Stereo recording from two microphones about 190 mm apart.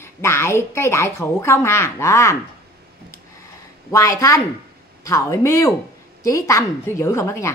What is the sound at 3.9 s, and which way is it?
A woman's voice, 15° left (ahead or behind).